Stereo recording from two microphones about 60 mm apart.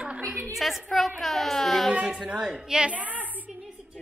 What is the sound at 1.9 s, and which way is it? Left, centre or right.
A woman's voice, centre.